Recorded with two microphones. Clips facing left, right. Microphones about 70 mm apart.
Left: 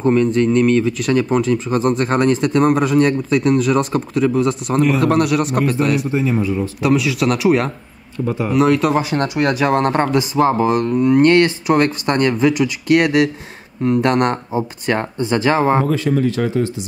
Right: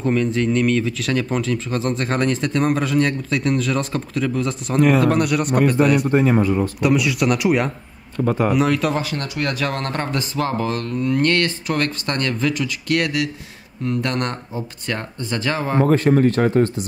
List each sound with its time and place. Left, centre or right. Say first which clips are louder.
0.0 s speech: left 5 dB; centre
6.0 s speech: right 2 dB; right
6.8 s speech: left 4 dB; centre
8.3 s speech: right 2 dB; right
8.5 s speech: left 4 dB; centre
9.1 s speech: left 7 dB; left
15.8 s speech: right 2 dB; right